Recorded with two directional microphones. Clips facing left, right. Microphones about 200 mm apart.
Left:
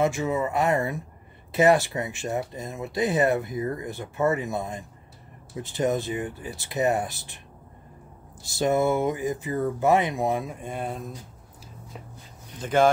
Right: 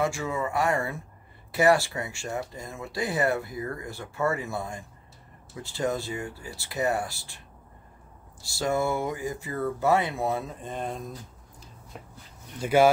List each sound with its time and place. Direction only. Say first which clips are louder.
0.0 s speech: left 4 dB; 20° left (ahead or behind)
8.4 s speech: left 4 dB; 20° left (ahead or behind)
12.5 s speech: right 1 dB; 10° right (ahead or behind)